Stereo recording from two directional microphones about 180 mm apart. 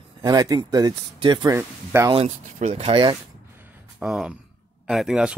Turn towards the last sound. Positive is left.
turn(degrees=0)  # may be behind; listen again after turning